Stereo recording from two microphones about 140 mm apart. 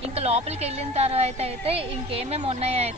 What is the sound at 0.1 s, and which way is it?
A woman's voice, 45° right (ahead or behind).